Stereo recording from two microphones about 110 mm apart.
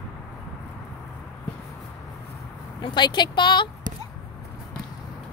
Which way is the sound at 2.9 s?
40° left (ahead or behind).